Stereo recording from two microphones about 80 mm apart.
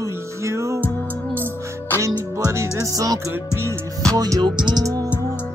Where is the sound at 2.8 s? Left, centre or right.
Right.